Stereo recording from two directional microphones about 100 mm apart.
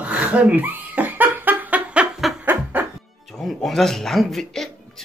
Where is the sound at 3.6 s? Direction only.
5° left (ahead or behind).